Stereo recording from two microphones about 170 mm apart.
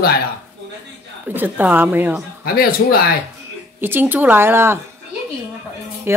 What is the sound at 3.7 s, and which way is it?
Speech, 10° right (ahead or behind).